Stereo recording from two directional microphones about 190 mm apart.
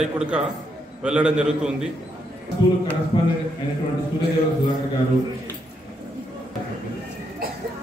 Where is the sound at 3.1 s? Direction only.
25° left (ahead or behind).